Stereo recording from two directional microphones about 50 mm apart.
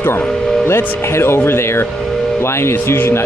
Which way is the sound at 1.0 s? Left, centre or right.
Left.